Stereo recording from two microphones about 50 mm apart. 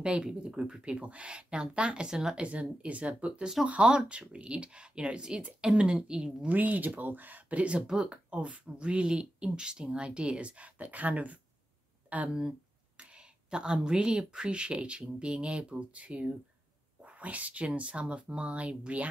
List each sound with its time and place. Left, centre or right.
0.2 s a woman's voice: centre
2.4 s a woman's voice: right
6.5 s speech: right
12.4 s speech: centre